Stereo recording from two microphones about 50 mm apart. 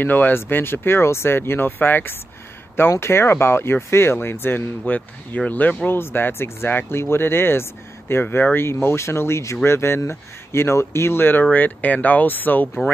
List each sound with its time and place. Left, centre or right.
0.0 s speech: left
2.9 s speech: left
5.9 s speech: left
9.6 s speech: left
11.5 s speech: left